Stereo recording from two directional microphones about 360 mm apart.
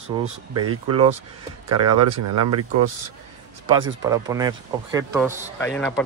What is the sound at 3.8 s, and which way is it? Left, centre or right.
Speech, centre.